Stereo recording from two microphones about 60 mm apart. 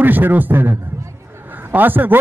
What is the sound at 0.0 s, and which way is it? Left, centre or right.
A man's voice, right.